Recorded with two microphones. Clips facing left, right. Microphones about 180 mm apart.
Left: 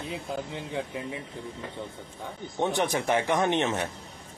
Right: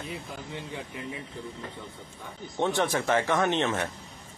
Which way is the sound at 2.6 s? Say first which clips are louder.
Even; 15° left (ahead or behind).